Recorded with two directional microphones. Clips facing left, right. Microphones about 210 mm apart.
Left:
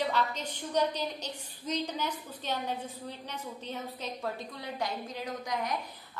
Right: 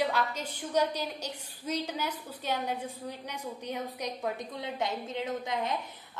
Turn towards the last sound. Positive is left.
turn(degrees=-25)  # may be behind; listen again after turning